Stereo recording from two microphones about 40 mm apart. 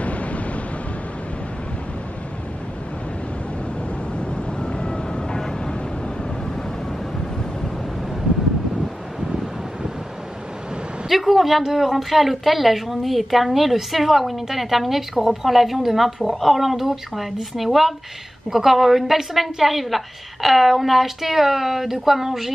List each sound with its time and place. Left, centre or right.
0.0 s vehicle: left
4.1 s vehicle: left
11.1 s speech: centre